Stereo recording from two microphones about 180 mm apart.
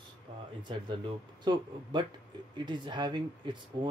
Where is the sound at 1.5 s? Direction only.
25° right (ahead or behind).